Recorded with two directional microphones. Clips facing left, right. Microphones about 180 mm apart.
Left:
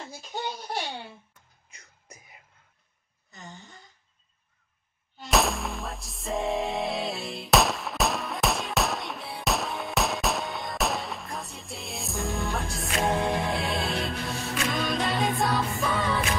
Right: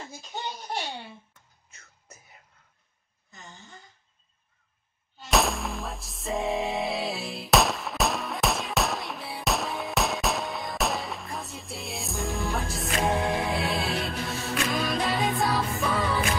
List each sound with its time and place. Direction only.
1.7 s music: 15° left (ahead or behind)
5.3 s music: centre (ahead or behind)